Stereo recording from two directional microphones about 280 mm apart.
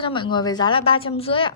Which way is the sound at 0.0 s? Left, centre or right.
Centre.